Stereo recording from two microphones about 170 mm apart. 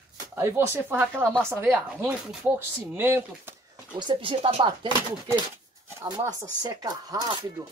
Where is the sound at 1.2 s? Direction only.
5° left (ahead or behind).